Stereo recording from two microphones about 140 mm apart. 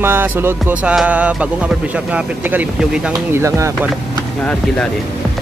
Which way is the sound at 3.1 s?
20° right (ahead or behind).